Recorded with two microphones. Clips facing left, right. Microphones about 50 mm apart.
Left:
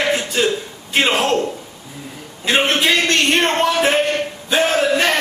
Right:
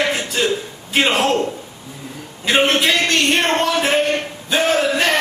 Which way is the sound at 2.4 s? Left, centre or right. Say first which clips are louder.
Right 1 dB; centre.